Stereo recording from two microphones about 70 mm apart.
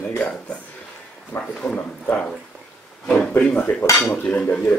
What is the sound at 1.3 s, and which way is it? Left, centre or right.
Speech, centre.